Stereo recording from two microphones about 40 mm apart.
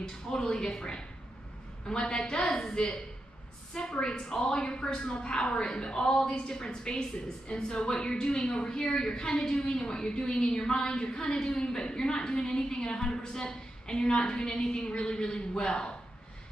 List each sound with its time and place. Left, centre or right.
0.0 s a woman's voice: centre
1.9 s a woman's voice: left
2.4 s a woman's voice: centre
4.0 s a woman's voice: centre